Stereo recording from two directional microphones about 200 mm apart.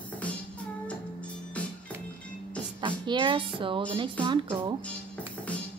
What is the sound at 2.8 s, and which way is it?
Speech, 25° right (ahead or behind).